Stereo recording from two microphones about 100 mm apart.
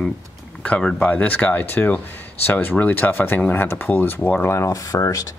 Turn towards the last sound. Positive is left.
turn(degrees=30)  # may be behind; listen again after turning